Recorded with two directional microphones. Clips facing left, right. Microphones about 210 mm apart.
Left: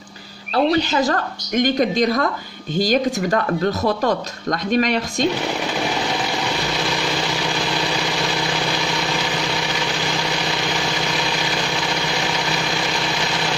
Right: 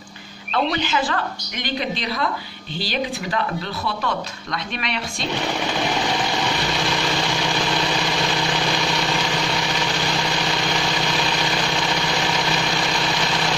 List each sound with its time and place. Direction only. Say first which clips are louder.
0.7 s speech: left 8 dB; 40° left (ahead or behind)